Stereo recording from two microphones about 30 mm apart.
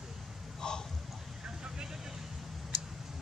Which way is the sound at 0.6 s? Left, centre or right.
Left.